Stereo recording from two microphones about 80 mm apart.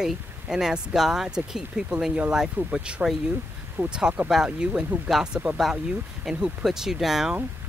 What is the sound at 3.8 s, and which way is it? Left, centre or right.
Speech, right.